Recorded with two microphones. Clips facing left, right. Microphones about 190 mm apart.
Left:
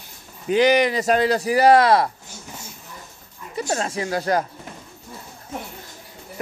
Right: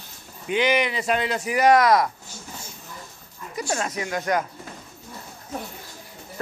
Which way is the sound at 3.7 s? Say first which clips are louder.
Left 3 dB; 30° left (ahead or behind).